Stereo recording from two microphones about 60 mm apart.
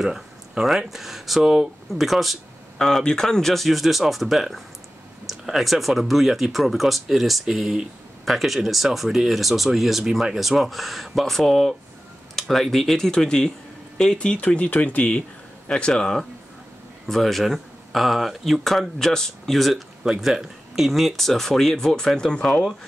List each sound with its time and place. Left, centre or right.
0.0 s speech: centre
2.8 s speech: centre
15.7 s speech: centre